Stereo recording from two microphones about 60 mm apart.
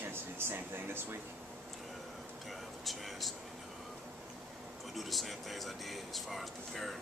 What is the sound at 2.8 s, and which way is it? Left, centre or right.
Speech, centre.